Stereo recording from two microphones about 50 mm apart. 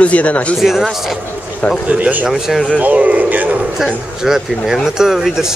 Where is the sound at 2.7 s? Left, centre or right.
Right.